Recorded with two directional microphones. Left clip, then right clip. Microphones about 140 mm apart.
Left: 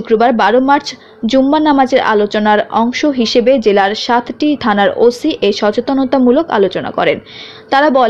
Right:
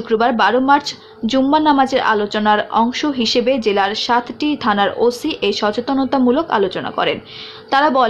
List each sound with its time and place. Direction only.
0.1 s a woman's voice: 35° left (ahead or behind)